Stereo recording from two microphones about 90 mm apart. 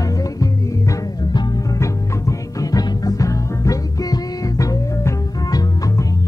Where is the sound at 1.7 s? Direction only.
35° left (ahead or behind).